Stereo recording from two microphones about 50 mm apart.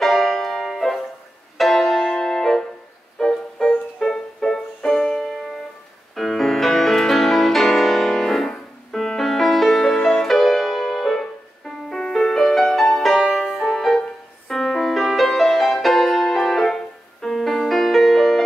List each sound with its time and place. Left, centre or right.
0.0 s music: centre
9.9 s music: centre
10.2 s music: centre
11.9 s music: centre
13.6 s music: centre